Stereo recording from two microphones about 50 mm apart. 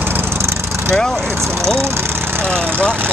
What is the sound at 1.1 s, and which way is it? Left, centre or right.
Speech, right.